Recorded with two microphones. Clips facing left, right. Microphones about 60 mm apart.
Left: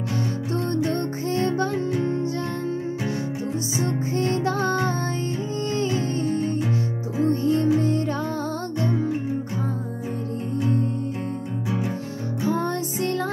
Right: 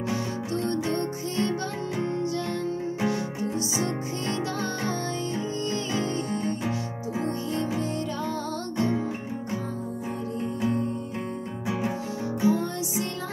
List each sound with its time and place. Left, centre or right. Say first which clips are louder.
0.5 s music: left 3 dB; left
3.8 s music: left 5 dB; left
6.2 s music: left 5 dB; right
7.4 s music: left 8 dB; left
12.4 s music: left 1 dB; left